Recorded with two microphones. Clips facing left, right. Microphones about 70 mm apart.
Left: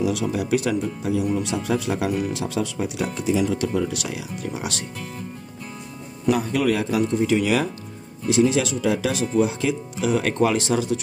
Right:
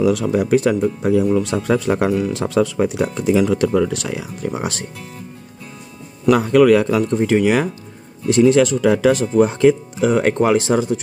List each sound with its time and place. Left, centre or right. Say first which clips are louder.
0.0 s speech: right 7 dB; right
3.3 s a man's voice: right 6 dB; right
3.9 s speech: right 5 dB; right
6.2 s a man's voice: right 9 dB; right
7.4 s speech: right 5 dB; right
8.3 s speech: right 7 dB; right